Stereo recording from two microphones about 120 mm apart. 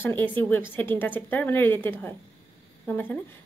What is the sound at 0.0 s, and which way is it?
Speech, 15° left (ahead or behind).